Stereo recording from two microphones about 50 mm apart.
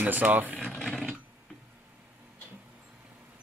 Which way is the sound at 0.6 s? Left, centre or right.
Centre.